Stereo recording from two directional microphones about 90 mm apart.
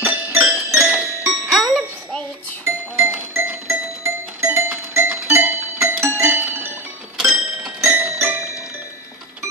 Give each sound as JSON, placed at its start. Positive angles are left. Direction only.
{"t": 0.0, "sound": "music", "side_deg": -20}
{"t": 1.5, "sound": "music", "side_deg": 0}
{"t": 3.1, "sound": "music", "side_deg": -20}
{"t": 7.2, "sound": "music", "side_deg": -10}
{"t": 7.8, "sound": "music", "side_deg": -30}